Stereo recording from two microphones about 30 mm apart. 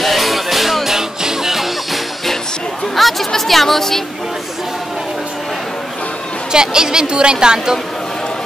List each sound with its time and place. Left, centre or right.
0.0 s music: centre
3.0 s a woman's voice: centre
6.5 s a woman's voice: right